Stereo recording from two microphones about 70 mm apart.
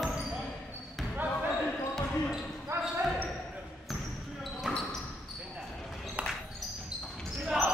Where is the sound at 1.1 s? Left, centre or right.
Right.